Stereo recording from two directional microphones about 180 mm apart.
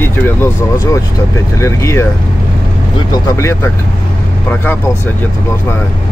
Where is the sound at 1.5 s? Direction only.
15° left (ahead or behind).